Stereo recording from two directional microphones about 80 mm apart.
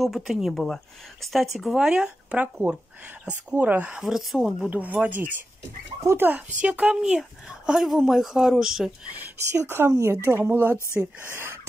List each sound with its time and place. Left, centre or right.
0.0 s speech: centre
4.0 s speech: centre
4.6 s speech: centre
5.9 s speech: right
6.6 s speech: centre
9.5 s speech: right